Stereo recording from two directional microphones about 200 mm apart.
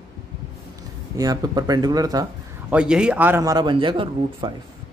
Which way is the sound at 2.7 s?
5° right (ahead or behind).